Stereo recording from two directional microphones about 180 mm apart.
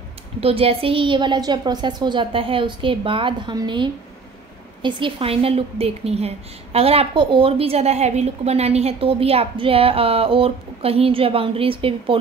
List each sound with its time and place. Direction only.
0.4 s a woman's voice: 30° right (ahead or behind)